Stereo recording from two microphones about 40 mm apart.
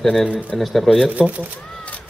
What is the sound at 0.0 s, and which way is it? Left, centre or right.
A man's voice, centre.